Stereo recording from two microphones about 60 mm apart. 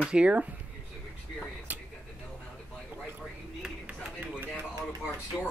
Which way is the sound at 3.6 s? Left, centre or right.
Centre.